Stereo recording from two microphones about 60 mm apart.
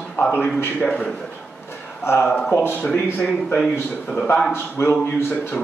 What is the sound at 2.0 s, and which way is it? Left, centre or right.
Speech, left.